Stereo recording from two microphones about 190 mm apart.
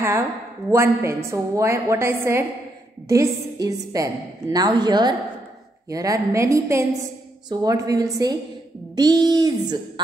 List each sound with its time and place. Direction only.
0.7 s a woman's voice: 15° right (ahead or behind)